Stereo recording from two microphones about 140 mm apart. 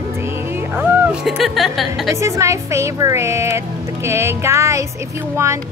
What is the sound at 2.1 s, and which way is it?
Speech, 20° right (ahead or behind).